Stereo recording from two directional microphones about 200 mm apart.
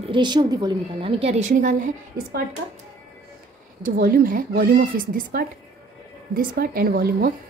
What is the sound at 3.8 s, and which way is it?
Speech, 45° right (ahead or behind).